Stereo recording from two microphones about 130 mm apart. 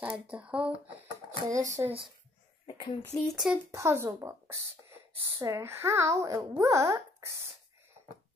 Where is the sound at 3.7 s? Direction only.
20° right (ahead or behind).